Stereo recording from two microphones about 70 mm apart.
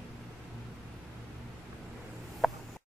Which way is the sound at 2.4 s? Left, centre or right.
Centre.